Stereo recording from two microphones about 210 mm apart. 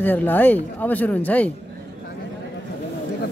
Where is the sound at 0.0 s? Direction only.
10° left (ahead or behind).